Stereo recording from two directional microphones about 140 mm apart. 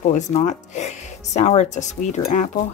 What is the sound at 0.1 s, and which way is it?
Speech, 55° left (ahead or behind).